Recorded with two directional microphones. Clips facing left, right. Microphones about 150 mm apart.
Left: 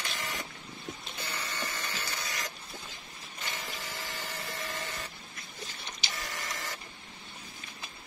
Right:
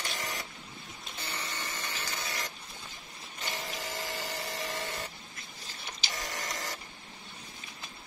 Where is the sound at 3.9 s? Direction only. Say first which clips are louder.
Right 3 dB; 40° right (ahead or behind).